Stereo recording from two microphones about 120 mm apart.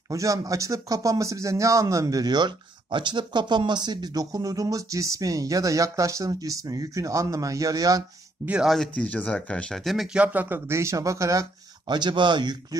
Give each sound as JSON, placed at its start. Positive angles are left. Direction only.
{"t": 0.1, "sound": "speech", "side_deg": -25}
{"t": 8.5, "sound": "speech", "side_deg": -5}
{"t": 10.1, "sound": "speech", "side_deg": -15}
{"t": 11.9, "sound": "speech", "side_deg": -40}